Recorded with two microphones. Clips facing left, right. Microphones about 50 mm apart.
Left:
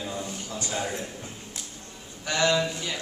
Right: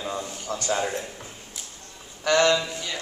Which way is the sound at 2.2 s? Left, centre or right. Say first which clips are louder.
Right 6 dB; right.